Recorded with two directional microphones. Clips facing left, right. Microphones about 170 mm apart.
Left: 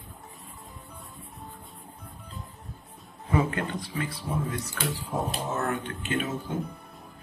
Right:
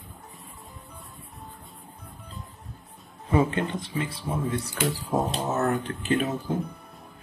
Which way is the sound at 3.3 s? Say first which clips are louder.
Right 3 dB; 25° right (ahead or behind).